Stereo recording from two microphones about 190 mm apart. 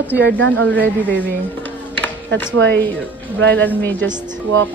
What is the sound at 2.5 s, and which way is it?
A woman's voice, 70° right (ahead or behind).